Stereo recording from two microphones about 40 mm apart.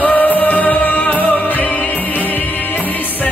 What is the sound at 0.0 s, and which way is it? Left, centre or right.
Music, left.